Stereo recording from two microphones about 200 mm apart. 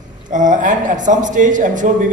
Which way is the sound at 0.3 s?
40° right (ahead or behind).